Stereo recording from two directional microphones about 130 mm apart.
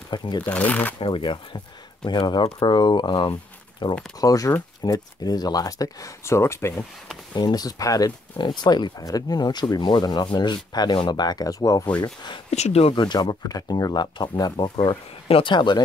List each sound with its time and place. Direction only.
0.1 s speech: 35° left (ahead or behind)
0.5 s speech: 10° left (ahead or behind)
0.9 s speech: 40° left (ahead or behind)
4.2 s speech: 25° left (ahead or behind)
7.3 s speech: 30° left (ahead or behind)
12.4 s speech: 55° left (ahead or behind)
12.9 s speech: 35° left (ahead or behind)
14.8 s speech: 45° left (ahead or behind)